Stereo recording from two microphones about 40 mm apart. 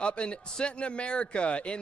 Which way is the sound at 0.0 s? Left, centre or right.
Left.